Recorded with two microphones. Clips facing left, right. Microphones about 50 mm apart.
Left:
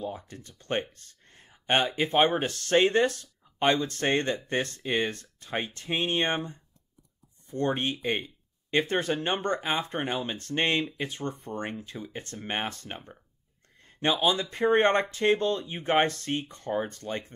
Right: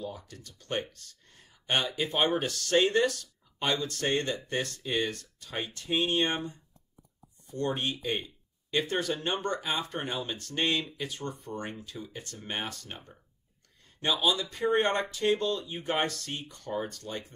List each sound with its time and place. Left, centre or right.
0.0 s speech: left